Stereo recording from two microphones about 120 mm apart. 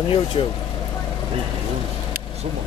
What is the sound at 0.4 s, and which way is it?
Speech, 50° left (ahead or behind).